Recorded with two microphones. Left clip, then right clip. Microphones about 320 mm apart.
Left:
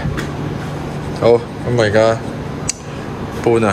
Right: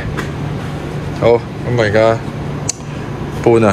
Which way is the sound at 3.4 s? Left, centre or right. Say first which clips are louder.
Right 3 dB; centre.